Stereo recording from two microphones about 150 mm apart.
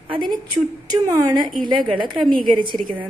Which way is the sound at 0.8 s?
25° right (ahead or behind).